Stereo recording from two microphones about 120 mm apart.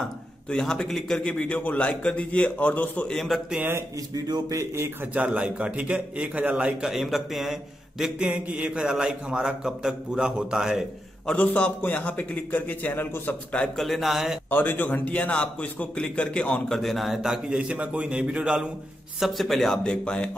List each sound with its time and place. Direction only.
0.5 s a man's voice: 5° left (ahead or behind)
3.5 s a man's voice: 15° right (ahead or behind)
4.1 s a man's voice: 30° right (ahead or behind); by 10.9 s 5° right (ahead or behind)
11.2 s a man's voice: 10° left (ahead or behind)
14.5 s a man's voice: 15° left (ahead or behind)